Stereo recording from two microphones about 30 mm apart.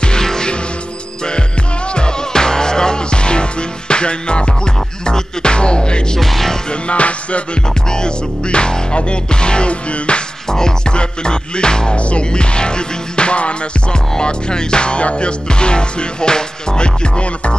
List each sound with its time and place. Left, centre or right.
0.0 s music: left
2.0 s music: left
6.1 s music: centre
6.7 s music: left
7.9 s music: left
10.5 s music: left
12.0 s music: left
12.3 s music: left
14.1 s music: left